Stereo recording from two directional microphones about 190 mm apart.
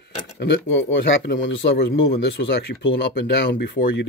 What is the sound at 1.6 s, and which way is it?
Speech, 60° left (ahead or behind).